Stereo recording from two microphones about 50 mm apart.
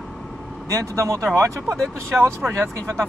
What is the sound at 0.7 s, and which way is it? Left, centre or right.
Speech, right.